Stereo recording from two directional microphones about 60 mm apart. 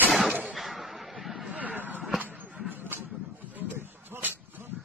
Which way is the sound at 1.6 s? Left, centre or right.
Right.